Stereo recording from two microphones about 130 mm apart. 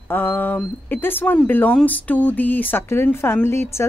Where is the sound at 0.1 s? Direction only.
15° left (ahead or behind).